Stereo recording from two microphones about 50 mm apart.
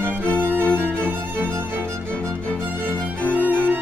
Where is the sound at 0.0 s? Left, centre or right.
Right.